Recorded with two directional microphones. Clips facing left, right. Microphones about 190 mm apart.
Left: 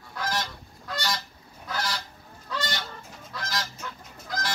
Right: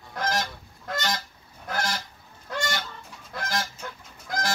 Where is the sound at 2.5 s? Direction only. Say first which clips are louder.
Right 2 dB; 50° right (ahead or behind).